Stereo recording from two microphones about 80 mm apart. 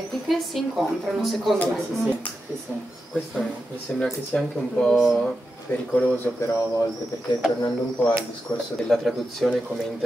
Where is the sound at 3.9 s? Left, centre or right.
Centre.